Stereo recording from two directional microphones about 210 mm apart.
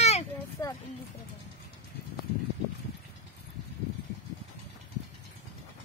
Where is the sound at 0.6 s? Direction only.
15° left (ahead or behind).